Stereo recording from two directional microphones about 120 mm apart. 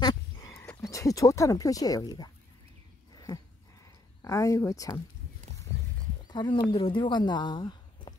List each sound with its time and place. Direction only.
0.0 s a sound: 25° left (ahead or behind)
0.8 s speech: 25° left (ahead or behind)
4.2 s speech: 25° left (ahead or behind)
6.2 s speech: 40° left (ahead or behind)